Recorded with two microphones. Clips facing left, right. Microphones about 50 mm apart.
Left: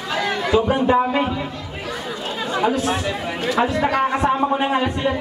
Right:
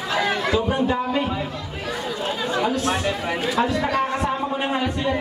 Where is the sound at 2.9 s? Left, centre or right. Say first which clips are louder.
Even; centre.